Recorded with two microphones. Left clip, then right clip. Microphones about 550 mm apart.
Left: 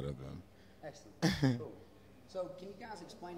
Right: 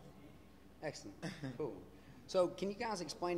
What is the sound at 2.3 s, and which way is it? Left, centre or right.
Speech, right.